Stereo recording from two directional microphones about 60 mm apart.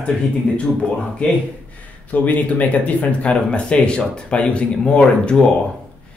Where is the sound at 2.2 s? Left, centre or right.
Left.